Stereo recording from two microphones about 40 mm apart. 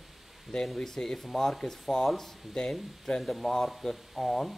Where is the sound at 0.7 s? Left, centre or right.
Centre.